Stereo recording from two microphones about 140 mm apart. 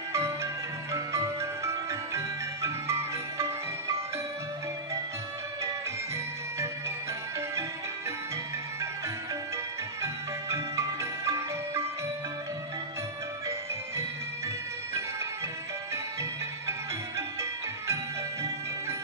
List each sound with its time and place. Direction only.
0.1 s music: 20° right (ahead or behind)
10.0 s music: 20° right (ahead or behind)
15.9 s music: 20° right (ahead or behind)